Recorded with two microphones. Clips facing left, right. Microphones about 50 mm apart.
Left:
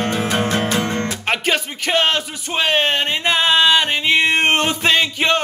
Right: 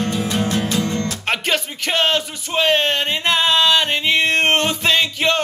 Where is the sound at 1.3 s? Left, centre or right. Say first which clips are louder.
Left 1 dB; centre.